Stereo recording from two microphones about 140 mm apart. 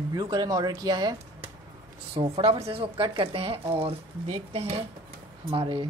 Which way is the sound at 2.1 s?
45° right (ahead or behind).